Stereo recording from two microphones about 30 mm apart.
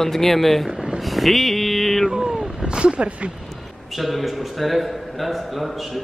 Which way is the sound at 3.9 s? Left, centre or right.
Centre.